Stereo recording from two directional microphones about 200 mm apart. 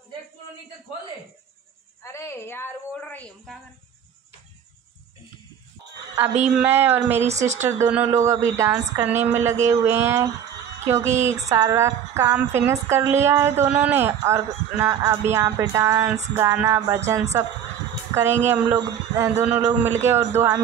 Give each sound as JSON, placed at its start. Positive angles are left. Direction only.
{"t": 2.0, "sound": "a woman's voice", "side_deg": 15}
{"t": 6.5, "sound": "speech", "side_deg": -10}
{"t": 7.2, "sound": "speech", "side_deg": -35}
{"t": 7.6, "sound": "speech", "side_deg": -10}